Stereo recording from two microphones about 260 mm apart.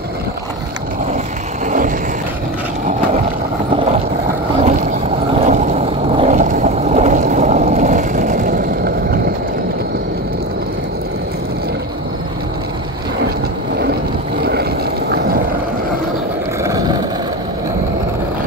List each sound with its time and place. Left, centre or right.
5.3 s boat: right
14.4 s vehicle: right